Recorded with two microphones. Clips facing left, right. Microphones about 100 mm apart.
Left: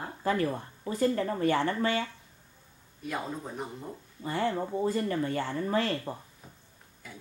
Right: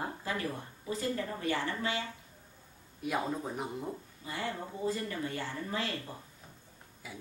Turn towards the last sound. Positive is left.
turn(degrees=-5)  # may be behind; listen again after turning